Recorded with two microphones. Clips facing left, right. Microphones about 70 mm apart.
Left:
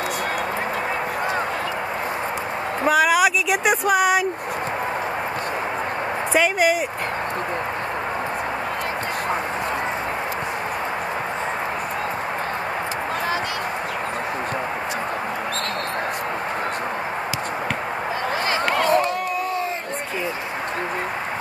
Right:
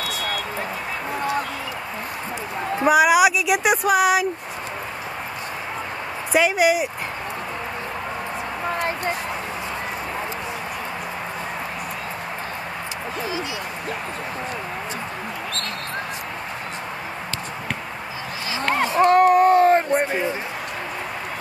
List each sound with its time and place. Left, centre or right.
2.8 s speech: centre
6.3 s speech: centre
18.9 s cat: right